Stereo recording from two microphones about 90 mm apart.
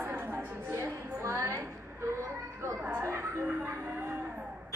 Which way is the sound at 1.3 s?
30° right (ahead or behind).